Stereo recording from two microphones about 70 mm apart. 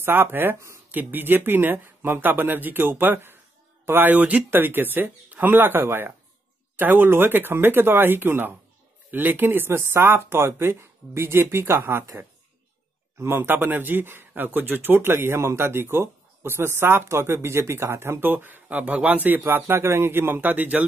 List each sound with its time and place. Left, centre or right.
0.0 s speech: right
13.2 s speech: right